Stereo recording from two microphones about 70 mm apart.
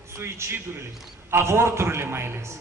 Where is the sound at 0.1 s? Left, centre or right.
Right.